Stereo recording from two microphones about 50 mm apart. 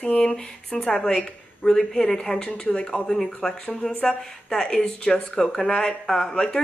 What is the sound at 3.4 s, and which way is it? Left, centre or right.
A woman's voice, centre.